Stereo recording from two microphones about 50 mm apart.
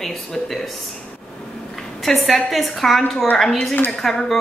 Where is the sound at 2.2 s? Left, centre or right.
Centre.